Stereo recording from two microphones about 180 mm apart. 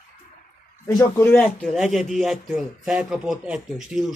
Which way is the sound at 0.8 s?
15° left (ahead or behind).